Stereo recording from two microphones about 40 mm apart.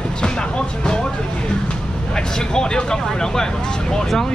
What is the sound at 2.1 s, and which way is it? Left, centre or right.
Vehicle, centre.